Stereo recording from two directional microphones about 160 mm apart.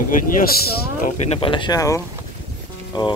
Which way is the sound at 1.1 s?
40° left (ahead or behind).